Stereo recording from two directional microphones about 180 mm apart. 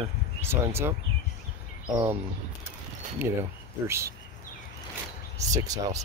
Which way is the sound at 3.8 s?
15° right (ahead or behind).